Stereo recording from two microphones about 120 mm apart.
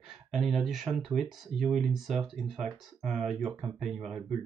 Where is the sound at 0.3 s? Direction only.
Centre (ahead or behind).